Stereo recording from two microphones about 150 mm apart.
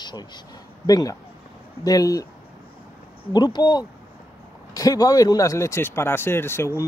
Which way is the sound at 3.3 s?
30° left (ahead or behind).